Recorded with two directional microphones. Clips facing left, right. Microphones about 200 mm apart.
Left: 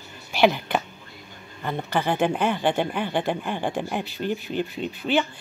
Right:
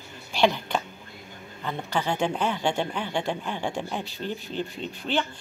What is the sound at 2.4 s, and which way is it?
Speech, 55° left (ahead or behind).